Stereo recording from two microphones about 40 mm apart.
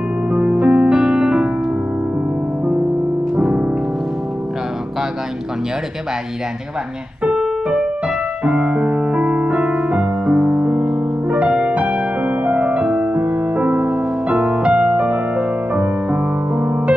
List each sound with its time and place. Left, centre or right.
0.3 s music: right
3.3 s music: right
7.2 s keyboard: centre
8.5 s music: right